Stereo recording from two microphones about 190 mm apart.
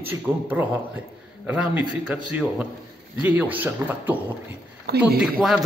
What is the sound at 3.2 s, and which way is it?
Speech, 10° right (ahead or behind).